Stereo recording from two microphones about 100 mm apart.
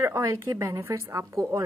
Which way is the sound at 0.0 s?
30° right (ahead or behind).